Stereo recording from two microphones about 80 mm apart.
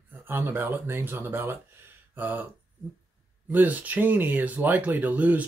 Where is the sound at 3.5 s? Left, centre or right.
Right.